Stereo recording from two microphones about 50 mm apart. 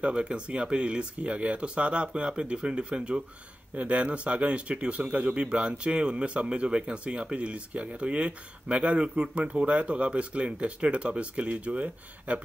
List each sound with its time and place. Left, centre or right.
0.0 s speech: centre